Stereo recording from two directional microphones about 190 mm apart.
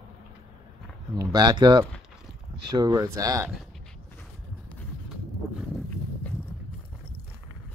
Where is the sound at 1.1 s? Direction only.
20° right (ahead or behind).